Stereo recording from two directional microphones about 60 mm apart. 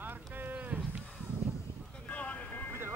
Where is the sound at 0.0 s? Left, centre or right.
Right.